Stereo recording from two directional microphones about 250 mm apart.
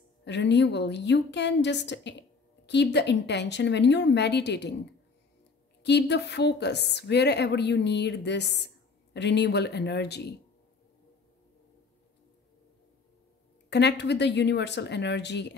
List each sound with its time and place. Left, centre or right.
0.2 s a woman's voice: left
5.8 s a woman's voice: left
13.7 s a woman's voice: left